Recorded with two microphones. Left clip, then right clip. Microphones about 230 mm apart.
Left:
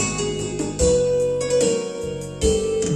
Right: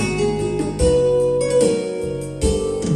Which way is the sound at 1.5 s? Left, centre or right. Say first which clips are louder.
Right 2 dB; left.